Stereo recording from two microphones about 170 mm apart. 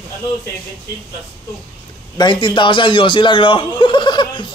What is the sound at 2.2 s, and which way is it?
A man's voice, 30° left (ahead or behind).